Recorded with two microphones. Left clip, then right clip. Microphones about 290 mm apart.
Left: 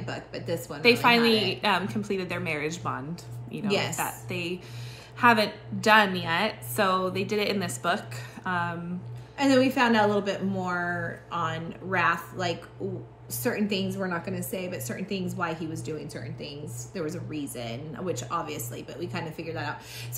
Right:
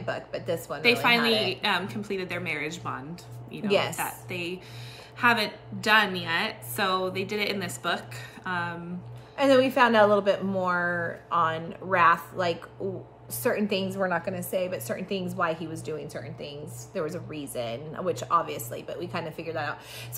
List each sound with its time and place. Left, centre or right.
0.0 s a woman's voice: centre
1.0 s a woman's voice: centre
9.4 s a woman's voice: centre